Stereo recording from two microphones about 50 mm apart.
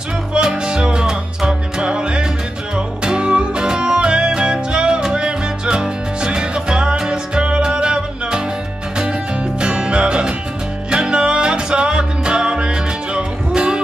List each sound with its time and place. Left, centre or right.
0.3 s music: centre
9.6 s music: centre